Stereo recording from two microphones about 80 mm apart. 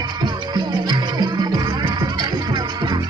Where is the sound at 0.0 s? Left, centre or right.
Right.